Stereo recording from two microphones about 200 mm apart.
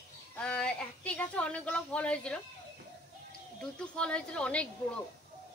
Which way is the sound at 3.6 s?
5° left (ahead or behind).